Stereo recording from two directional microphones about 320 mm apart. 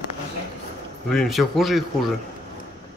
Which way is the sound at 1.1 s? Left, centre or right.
Centre.